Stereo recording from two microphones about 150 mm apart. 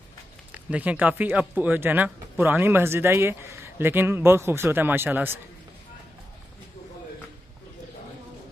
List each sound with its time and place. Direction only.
0.5 s a man's voice: 10° right (ahead or behind)